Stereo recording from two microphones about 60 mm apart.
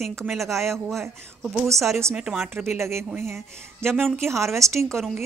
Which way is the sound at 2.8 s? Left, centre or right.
Right.